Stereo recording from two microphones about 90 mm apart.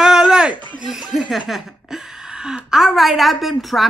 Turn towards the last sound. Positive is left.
turn(degrees=0)  # may be behind; listen again after turning